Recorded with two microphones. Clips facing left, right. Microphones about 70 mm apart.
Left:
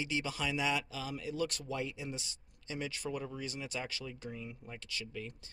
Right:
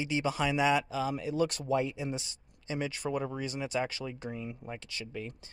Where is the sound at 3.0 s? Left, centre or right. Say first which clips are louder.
Right 6 dB; right.